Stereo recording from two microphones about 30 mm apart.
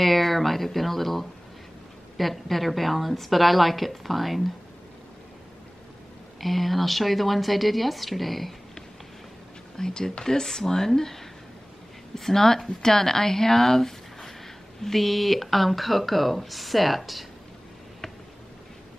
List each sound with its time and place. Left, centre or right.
0.0 s speech: centre
6.4 s speech: centre
9.8 s speech: centre